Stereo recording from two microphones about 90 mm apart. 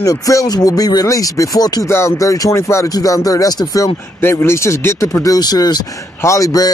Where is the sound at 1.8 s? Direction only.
30° left (ahead or behind).